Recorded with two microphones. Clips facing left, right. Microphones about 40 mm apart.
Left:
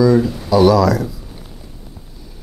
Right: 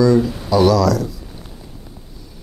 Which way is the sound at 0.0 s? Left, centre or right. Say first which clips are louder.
Left 1 dB; centre.